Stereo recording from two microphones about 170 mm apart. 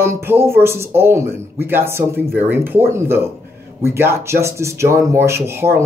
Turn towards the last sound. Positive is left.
turn(degrees=-15)  # may be behind; listen again after turning